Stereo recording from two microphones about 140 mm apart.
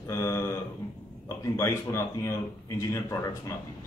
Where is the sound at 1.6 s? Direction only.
20° left (ahead or behind).